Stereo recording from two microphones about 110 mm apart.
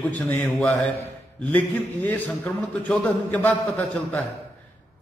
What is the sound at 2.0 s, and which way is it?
Mantra, 15° left (ahead or behind).